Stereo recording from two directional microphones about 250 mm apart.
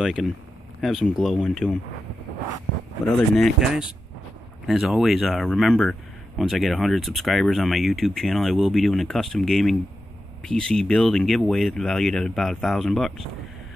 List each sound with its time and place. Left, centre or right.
0.0 s speech: centre
3.3 s speech: centre